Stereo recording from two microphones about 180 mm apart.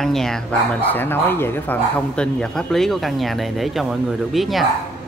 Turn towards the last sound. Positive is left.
turn(degrees=0)  # may be behind; listen again after turning